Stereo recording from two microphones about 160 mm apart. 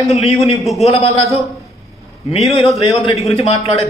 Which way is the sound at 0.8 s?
40° left (ahead or behind).